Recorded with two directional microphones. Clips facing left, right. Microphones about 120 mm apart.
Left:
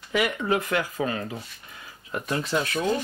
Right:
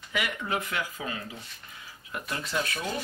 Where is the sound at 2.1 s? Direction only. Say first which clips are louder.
Left 7 dB; 35° left (ahead or behind).